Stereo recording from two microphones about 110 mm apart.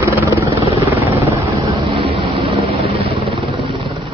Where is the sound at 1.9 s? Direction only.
55° right (ahead or behind).